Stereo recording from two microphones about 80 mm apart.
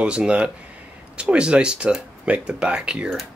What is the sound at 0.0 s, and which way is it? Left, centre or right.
Speech, centre.